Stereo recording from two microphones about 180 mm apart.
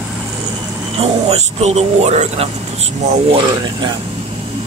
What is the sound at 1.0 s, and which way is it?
Speech, 35° right (ahead or behind).